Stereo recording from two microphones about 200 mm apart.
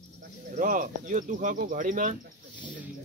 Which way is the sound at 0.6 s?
40° right (ahead or behind).